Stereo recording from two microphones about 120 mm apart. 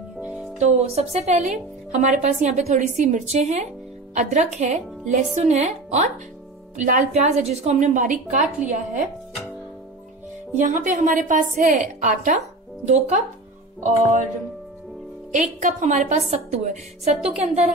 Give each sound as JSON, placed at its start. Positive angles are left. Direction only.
{"t": 0.2, "sound": "music", "side_deg": -10}
{"t": 0.6, "sound": "speech", "side_deg": -65}
{"t": 6.8, "sound": "a woman's voice", "side_deg": -85}
{"t": 10.5, "sound": "a woman's voice", "side_deg": -90}
{"t": 12.8, "sound": "speech", "side_deg": -75}
{"t": 15.3, "sound": "a woman's voice", "side_deg": -90}